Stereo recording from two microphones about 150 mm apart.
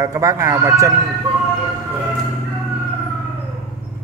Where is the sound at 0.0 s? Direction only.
25° right (ahead or behind).